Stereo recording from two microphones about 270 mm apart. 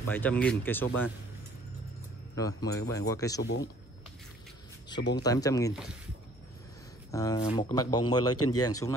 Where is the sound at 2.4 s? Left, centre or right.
Centre.